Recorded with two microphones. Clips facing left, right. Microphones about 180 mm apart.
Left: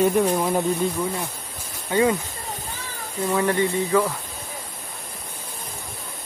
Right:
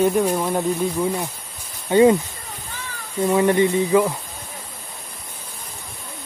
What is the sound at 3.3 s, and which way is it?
Speech, 20° right (ahead or behind).